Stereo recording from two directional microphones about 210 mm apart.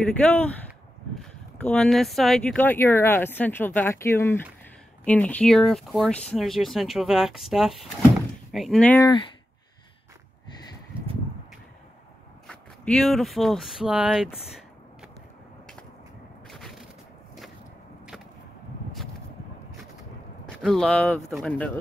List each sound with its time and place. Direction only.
0.1 s speech: 5° left (ahead or behind)
9.0 s speech: 20° left (ahead or behind)
10.9 s a sound: 25° right (ahead or behind)
12.4 s speech: centre (ahead or behind)
16.4 s crushing: centre (ahead or behind)
20.4 s speech: centre (ahead or behind)